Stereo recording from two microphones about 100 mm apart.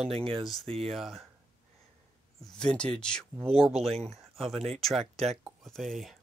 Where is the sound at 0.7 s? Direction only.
85° right.